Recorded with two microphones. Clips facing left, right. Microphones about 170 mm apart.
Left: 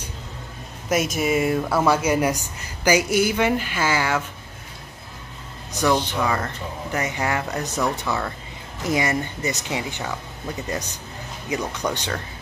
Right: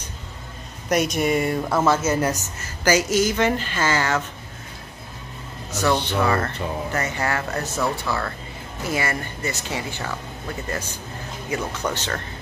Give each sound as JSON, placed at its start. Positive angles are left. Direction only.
{"t": 0.8, "sound": "speech", "side_deg": 0}
{"t": 1.9, "sound": "speech", "side_deg": 10}
{"t": 5.7, "sound": "speech", "side_deg": 15}
{"t": 11.5, "sound": "speech", "side_deg": 15}